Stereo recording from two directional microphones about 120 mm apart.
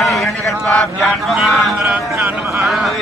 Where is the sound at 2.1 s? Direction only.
15° right (ahead or behind).